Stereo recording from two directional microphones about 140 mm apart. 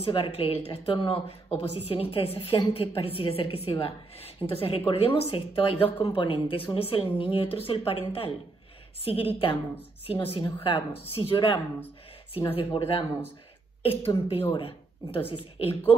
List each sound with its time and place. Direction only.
0.0 s a woman's voice: 40° left (ahead or behind)